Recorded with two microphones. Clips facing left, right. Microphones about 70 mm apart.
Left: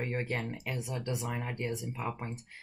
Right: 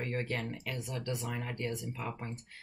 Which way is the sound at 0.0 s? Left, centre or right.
Centre.